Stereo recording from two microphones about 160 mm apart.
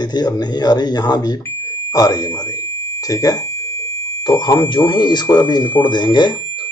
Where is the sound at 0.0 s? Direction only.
25° left (ahead or behind).